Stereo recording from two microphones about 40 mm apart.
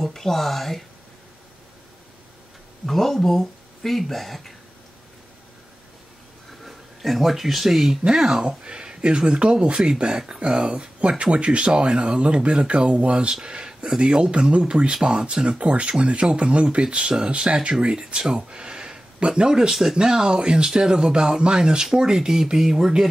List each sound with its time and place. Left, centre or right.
0.0 s speech: centre
2.9 s speech: centre
6.6 s speech: centre